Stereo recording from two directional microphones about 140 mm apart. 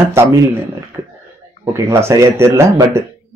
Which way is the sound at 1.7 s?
20° right (ahead or behind).